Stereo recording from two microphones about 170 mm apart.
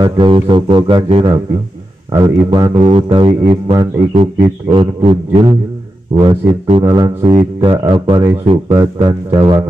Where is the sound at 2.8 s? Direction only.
35° right (ahead or behind).